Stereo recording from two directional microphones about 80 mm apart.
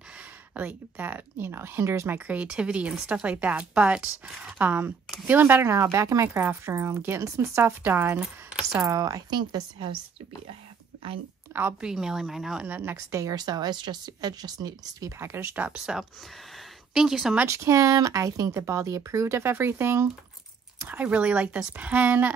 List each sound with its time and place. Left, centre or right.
0.6 s speech: centre
2.1 s speech: centre
8.8 s speech: right
9.4 s a woman's voice: right
11.8 s speech: centre
12.6 s speech: right
12.9 s speech: right
15.1 s speech: right
15.5 s speech: centre
15.8 s speech: centre
17.5 s speech: right